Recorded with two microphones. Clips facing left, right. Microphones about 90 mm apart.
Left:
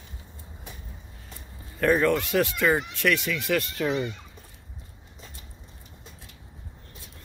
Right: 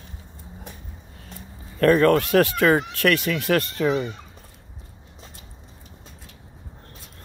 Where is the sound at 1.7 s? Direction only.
65° right (ahead or behind).